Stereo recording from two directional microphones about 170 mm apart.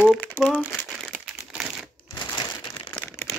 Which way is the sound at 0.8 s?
Centre (ahead or behind).